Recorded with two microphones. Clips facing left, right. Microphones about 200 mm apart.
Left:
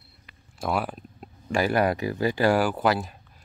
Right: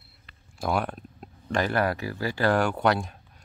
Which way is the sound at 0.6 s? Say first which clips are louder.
Even; 5° left (ahead or behind).